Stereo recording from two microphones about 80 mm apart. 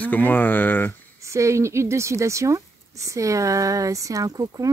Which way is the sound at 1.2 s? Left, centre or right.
Right.